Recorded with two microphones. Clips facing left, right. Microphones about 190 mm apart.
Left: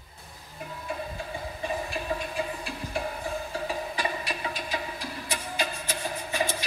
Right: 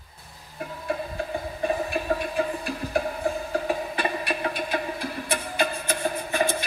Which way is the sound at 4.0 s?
60° right (ahead or behind).